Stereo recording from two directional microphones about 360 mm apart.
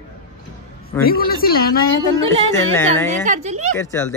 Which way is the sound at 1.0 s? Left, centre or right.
Left.